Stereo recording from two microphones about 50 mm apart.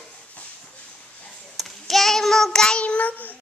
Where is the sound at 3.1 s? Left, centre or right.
Left.